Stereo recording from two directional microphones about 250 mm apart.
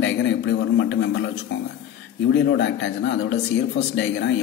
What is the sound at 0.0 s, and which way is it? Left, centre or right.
A man's voice, left.